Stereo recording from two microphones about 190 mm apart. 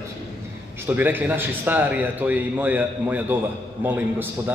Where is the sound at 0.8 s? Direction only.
10° right (ahead or behind).